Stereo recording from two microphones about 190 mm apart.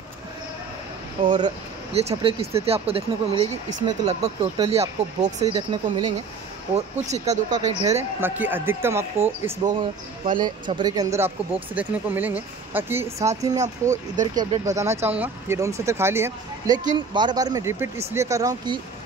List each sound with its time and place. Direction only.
1.2 s speech: 25° right (ahead or behind)
6.7 s speech: 35° right (ahead or behind)
7.5 s speech: 20° right (ahead or behind)
13.6 s speech: 40° right (ahead or behind)
14.2 s speech: 20° right (ahead or behind)